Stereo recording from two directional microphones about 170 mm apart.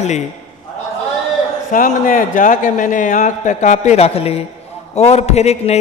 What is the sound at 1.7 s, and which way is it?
A man's voice, 50° left (ahead or behind).